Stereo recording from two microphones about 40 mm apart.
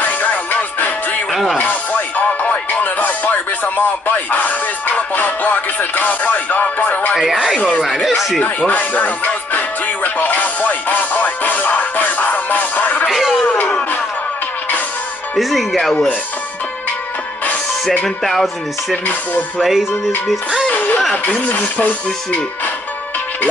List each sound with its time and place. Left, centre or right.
0.0 s music: left
1.3 s music: centre
1.6 s music: left
8.4 s music: left
15.8 s music: centre
18.0 s music: centre
19.6 s music: centre
20.6 s music: left
21.3 s speech: left